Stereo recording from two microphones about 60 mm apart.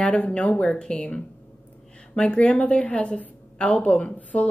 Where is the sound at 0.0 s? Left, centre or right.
Centre.